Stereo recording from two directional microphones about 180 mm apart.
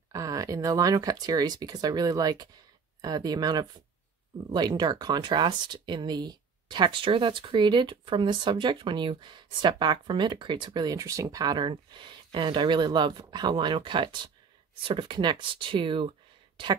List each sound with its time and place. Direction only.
0.1 s speech: 20° right (ahead or behind)